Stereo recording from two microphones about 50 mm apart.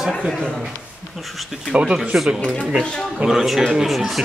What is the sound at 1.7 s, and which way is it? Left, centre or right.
Speech, centre.